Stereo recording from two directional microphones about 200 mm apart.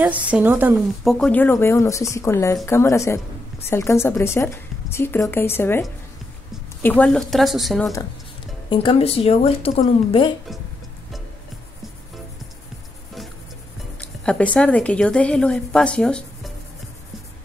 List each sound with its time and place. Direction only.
0.0 s a woman's voice: 5° right (ahead or behind)
1.1 s a woman's voice: 5° left (ahead or behind)
8.6 s speech: 25° left (ahead or behind)
14.2 s speech: 5° left (ahead or behind)